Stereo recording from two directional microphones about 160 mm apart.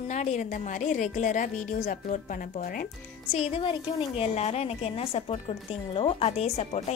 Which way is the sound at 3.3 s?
40° left (ahead or behind).